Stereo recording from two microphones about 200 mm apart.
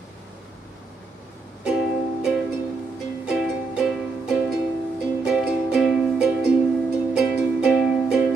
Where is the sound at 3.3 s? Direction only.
5° right (ahead or behind).